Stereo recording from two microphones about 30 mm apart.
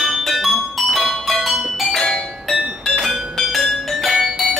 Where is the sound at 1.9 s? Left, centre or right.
Centre.